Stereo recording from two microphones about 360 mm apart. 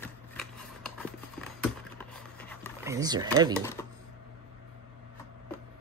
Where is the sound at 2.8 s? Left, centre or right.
Centre.